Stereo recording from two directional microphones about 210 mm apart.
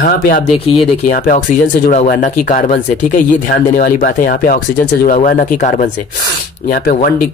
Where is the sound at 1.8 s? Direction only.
40° left (ahead or behind).